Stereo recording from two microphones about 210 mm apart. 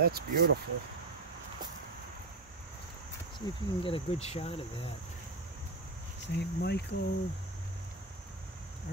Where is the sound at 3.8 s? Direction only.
25° left (ahead or behind).